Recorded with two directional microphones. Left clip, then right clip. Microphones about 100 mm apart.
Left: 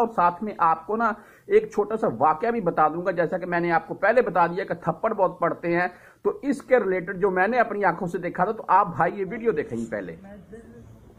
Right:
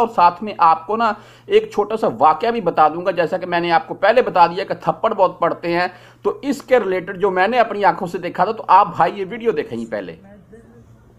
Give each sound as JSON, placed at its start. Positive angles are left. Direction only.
{"t": 0.1, "sound": "speech", "side_deg": -10}
{"t": 0.5, "sound": "speech", "side_deg": -25}
{"t": 3.0, "sound": "speech", "side_deg": -20}